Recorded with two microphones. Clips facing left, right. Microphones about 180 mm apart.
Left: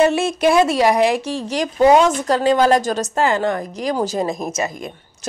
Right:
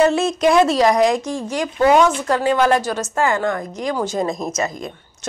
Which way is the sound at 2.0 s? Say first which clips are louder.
Left 2 dB; 40° left (ahead or behind).